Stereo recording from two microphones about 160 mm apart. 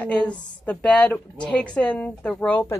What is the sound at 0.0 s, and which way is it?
A woman's voice, 10° left (ahead or behind).